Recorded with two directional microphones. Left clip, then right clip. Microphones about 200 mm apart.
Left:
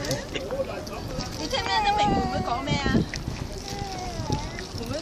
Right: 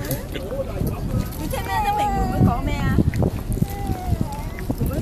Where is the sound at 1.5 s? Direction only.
20° left (ahead or behind).